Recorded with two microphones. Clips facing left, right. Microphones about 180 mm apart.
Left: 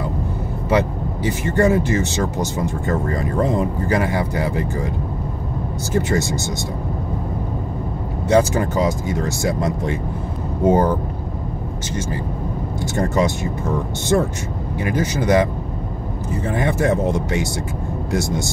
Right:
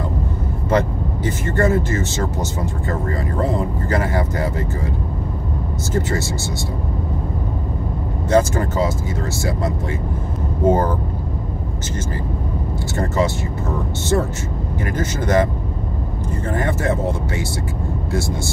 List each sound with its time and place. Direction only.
0.7 s speech: 10° left (ahead or behind)
5.9 s speech: 15° left (ahead or behind)
8.3 s speech: 15° left (ahead or behind)
12.9 s speech: 15° left (ahead or behind)
14.8 s speech: 10° left (ahead or behind)
16.4 s speech: 15° left (ahead or behind)